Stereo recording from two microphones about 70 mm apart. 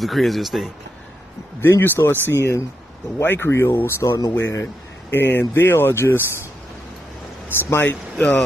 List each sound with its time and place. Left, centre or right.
0.0 s speech: centre
1.6 s speech: left
5.1 s speech: left
7.4 s speech: left
8.2 s speech: centre